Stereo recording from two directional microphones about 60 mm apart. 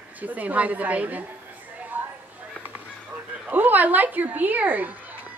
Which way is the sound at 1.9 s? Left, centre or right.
Right.